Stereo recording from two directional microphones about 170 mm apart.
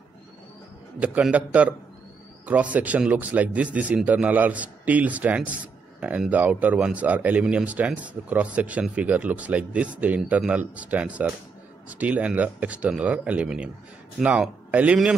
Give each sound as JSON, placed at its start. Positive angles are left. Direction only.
{"t": 0.9, "sound": "speech", "side_deg": -5}